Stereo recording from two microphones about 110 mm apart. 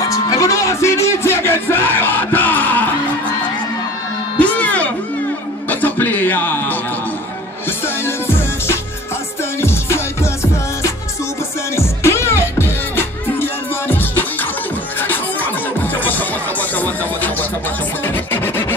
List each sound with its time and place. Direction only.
0.1 s music: 30° left (ahead or behind)
4.4 s music: 15° left (ahead or behind)
7.8 s music: 20° left (ahead or behind)